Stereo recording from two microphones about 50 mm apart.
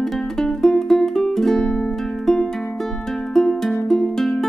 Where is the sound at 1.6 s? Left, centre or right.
Centre.